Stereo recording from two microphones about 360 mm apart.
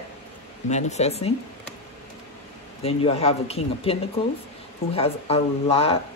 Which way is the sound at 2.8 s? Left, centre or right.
Centre.